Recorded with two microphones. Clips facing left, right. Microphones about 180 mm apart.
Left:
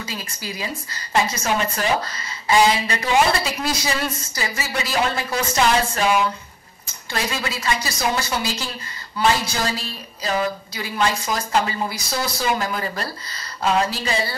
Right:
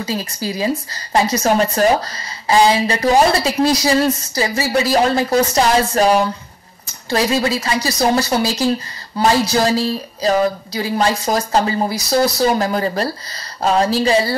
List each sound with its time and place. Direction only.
0.0 s a woman's voice: 35° right (ahead or behind)